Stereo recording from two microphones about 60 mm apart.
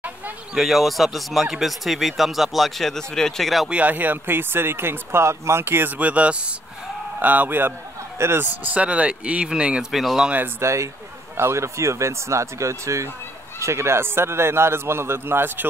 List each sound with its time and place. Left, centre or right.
0.6 s speech: centre
3.8 s speech: right
5.9 s a man's voice: right
8.7 s speech: right
10.6 s a man's voice: right